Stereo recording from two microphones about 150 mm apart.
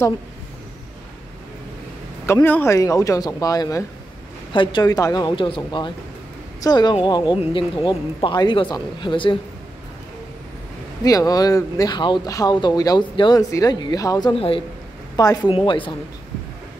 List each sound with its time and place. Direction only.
2.2 s speech: 15° left (ahead or behind); by 9.4 s 35° left (ahead or behind)
11.1 s speech: 25° left (ahead or behind)
14.3 s speech: 35° left (ahead or behind)
15.1 s speech: 25° left (ahead or behind)